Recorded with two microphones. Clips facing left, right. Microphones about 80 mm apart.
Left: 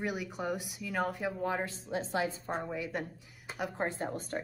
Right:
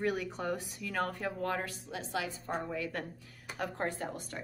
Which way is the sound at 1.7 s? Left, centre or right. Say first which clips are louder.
Left 4 dB; left.